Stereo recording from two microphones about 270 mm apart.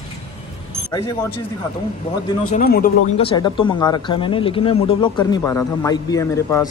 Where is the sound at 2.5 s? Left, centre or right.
Left.